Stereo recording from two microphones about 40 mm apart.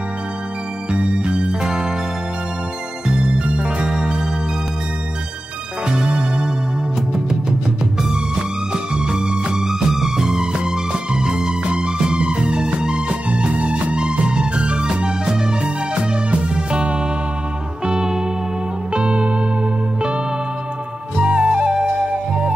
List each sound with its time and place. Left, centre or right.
0.9 s music: right
3.1 s music: right
5.9 s music: right
8.7 s music: centre
21.2 s flute: right